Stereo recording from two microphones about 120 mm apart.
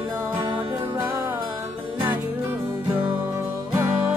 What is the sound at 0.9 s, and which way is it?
Music, 20° right (ahead or behind).